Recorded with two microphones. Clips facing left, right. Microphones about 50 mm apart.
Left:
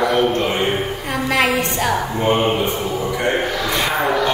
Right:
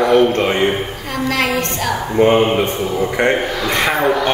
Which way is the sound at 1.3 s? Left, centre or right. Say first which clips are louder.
Left 2 dB; centre.